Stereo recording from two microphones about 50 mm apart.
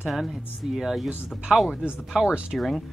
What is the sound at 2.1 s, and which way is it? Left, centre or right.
Speech, centre.